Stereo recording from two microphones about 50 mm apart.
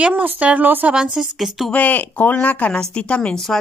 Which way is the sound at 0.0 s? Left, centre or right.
Right.